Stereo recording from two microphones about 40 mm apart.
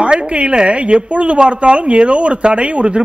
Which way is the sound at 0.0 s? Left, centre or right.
Right.